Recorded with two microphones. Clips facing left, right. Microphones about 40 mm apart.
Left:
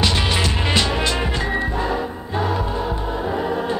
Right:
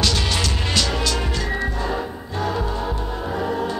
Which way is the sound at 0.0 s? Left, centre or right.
Left.